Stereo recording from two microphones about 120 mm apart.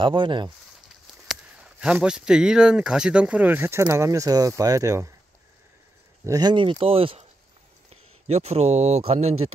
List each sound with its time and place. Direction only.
0.0 s speech: 45° right (ahead or behind)
1.3 s speech: 5° right (ahead or behind); by 5.1 s 25° right (ahead or behind)
6.2 s speech: 30° right (ahead or behind)
6.5 s speech: 50° right (ahead or behind)
7.9 s speech: 65° right (ahead or behind)